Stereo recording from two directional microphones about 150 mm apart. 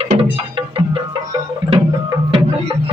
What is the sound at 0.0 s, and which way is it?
Music, 40° right (ahead or behind).